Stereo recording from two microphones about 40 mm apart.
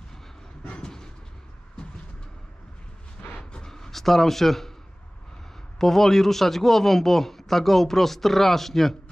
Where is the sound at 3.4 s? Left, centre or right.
Left.